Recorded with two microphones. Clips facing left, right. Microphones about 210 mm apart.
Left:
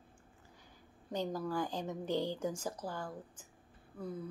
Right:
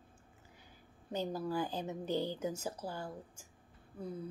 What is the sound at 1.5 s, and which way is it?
Speech, 10° right (ahead or behind).